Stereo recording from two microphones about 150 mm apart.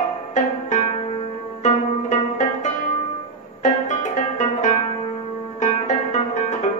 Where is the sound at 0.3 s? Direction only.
50° left (ahead or behind).